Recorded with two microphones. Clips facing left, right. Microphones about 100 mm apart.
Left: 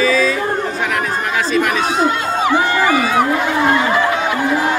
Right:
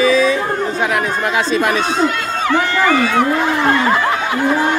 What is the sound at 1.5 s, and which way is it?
Speech, 25° right (ahead or behind).